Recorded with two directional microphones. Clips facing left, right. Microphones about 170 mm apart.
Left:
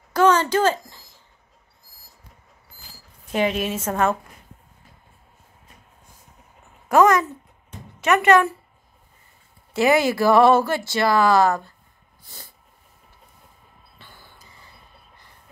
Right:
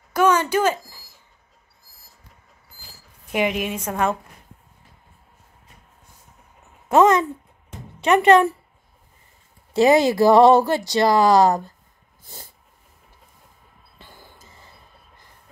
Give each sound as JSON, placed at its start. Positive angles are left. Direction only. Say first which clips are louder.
{"t": 0.1, "sound": "a sound", "louder": "left 1 dB", "side_deg": -10}
{"t": 3.3, "sound": "speech", "louder": "even", "side_deg": -15}
{"t": 6.9, "sound": "speech", "louder": "right 1 dB", "side_deg": -25}
{"t": 9.8, "sound": "speech", "louder": "right 3 dB", "side_deg": -20}
{"t": 13.9, "sound": "basketball bounce", "louder": "right 3 dB", "side_deg": -45}